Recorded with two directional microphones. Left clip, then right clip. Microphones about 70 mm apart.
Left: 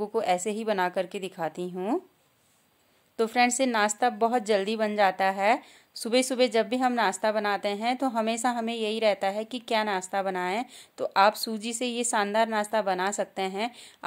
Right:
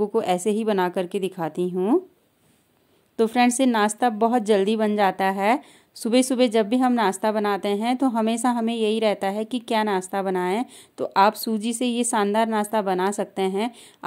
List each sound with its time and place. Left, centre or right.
0.0 s a woman's voice: right
3.2 s a woman's voice: right